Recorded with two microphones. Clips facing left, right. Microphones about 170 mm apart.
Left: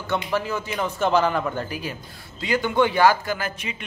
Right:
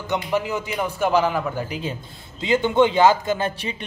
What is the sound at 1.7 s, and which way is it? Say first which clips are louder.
A man's voice: right 2 dB; 25° right (ahead or behind).